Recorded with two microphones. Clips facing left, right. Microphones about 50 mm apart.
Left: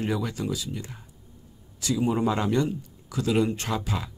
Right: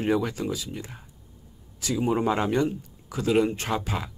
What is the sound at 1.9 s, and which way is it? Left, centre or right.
Speech, centre.